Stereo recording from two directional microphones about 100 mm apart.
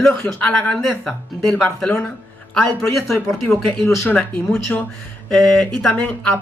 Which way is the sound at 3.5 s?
20° left (ahead or behind).